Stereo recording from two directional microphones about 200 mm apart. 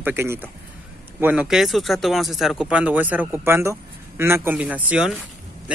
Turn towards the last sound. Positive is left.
turn(degrees=-5)  # may be behind; listen again after turning